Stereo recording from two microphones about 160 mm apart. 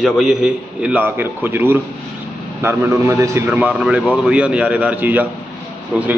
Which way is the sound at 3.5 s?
5° right (ahead or behind).